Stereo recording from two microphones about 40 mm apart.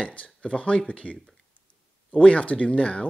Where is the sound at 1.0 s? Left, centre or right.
Left.